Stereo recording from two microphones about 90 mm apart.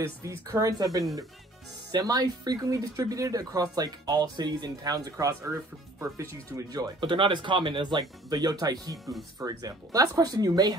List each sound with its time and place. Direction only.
0.0 s speech: 35° right (ahead or behind)
5.1 s speech: 30° right (ahead or behind)
6.5 s speech: 45° right (ahead or behind)
7.0 s speech: 65° right (ahead or behind); by 10.7 s 45° right (ahead or behind)